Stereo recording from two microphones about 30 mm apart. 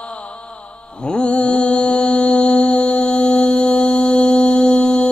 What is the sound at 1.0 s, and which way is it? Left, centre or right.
Mantra, left.